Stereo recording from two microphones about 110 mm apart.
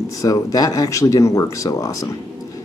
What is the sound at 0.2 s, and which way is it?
Speech, 30° left (ahead or behind).